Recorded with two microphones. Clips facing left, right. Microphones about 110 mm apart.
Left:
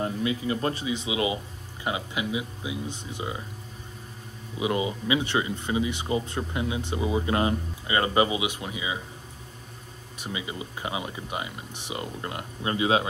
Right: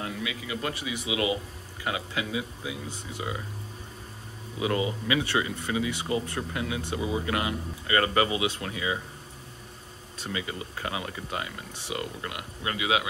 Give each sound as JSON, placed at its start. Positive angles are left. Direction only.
{"t": 0.0, "sound": "speech", "side_deg": 35}
{"t": 4.6, "sound": "speech", "side_deg": 20}
{"t": 10.1, "sound": "speech", "side_deg": 15}